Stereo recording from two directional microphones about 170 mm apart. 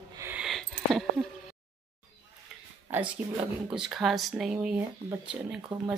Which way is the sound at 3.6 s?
5° right (ahead or behind).